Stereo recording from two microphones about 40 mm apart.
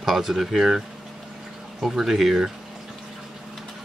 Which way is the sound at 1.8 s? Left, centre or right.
Centre.